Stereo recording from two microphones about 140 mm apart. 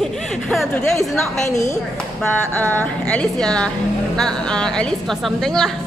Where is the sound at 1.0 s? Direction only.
20° left (ahead or behind); by 5.7 s 5° left (ahead or behind).